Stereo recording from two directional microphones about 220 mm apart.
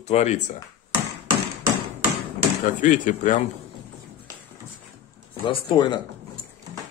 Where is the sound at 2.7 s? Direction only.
35° left (ahead or behind).